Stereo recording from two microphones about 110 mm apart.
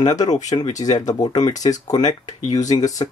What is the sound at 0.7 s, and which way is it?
Speech, 35° left (ahead or behind).